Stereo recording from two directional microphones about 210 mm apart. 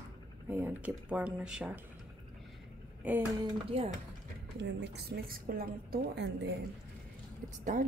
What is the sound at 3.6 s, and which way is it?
Speech, 30° right (ahead or behind).